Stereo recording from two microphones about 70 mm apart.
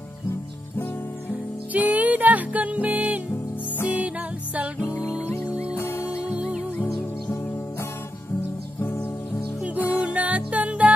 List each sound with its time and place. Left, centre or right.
1.7 s music: right
5.8 s music: left
6.3 s music: centre
9.8 s music: right